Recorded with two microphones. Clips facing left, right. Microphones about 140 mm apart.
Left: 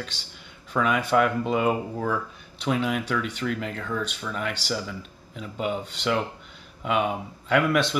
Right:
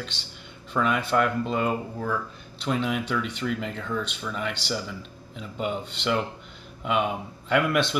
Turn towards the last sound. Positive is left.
turn(degrees=0)  # may be behind; listen again after turning